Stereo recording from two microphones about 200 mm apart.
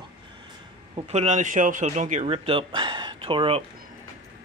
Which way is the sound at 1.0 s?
35° right (ahead or behind).